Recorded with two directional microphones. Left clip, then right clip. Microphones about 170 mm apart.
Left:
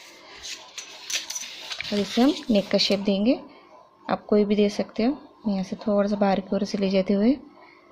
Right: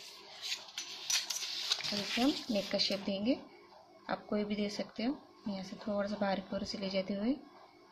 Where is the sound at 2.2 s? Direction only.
50° left (ahead or behind).